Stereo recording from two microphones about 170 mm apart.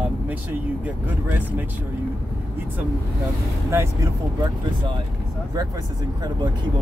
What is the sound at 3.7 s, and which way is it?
Speech, 15° right (ahead or behind).